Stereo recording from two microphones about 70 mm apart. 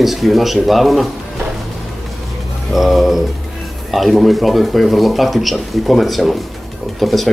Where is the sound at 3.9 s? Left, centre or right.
Centre.